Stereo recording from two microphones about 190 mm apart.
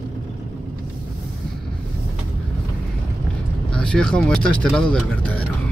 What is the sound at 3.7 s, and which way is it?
Speech, 5° left (ahead or behind).